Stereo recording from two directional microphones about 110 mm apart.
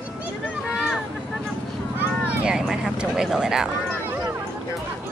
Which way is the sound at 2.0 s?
20° right (ahead or behind).